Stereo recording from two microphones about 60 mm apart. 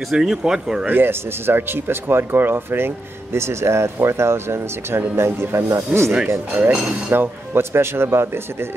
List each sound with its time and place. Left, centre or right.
0.1 s speech: centre
0.8 s speech: right
5.9 s speech: right